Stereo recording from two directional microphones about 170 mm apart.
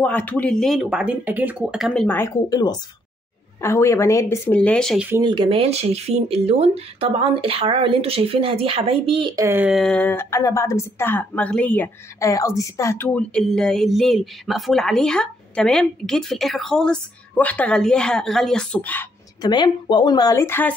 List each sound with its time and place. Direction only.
0.0 s speech: 10° left (ahead or behind)
2.0 s speech: 10° left (ahead or behind)
2.5 s speech: 25° left (ahead or behind)
4.6 s speech: 5° left (ahead or behind)
5.1 s speech: 25° right (ahead or behind)
9.3 s speech: 15° right (ahead or behind); by 19.0 s 10° left (ahead or behind)
19.4 s speech: 25° left (ahead or behind)